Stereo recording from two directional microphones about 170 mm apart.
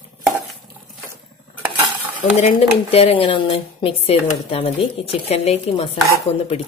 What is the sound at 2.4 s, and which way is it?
Speech, 35° left (ahead or behind).